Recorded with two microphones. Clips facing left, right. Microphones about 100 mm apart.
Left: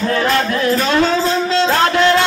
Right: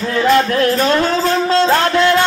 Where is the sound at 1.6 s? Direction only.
30° right (ahead or behind).